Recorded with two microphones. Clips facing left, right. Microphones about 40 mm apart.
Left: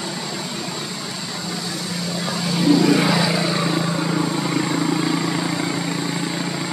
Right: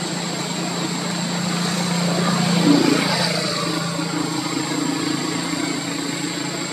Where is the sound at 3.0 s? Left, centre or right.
Centre.